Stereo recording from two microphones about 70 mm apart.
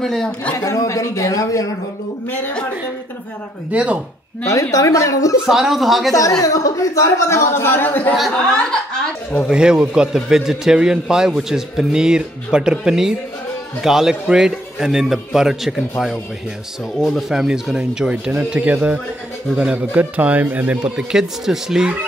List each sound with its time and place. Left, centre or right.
0.0 s speech: centre
0.6 s speech: left
2.2 s speech: left
3.7 s a man's voice: centre
4.5 s speech: left
5.5 s a man's voice: centre
6.4 s speech: left
8.3 s speech: centre
9.5 s a man's voice: centre
17.0 s a man's voice: centre; by 20.9 s right
20.9 s a man's voice: centre